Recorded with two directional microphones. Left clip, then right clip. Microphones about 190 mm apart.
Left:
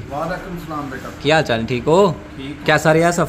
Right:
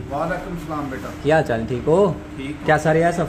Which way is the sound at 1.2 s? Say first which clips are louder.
Left 2 dB; 10° left (ahead or behind).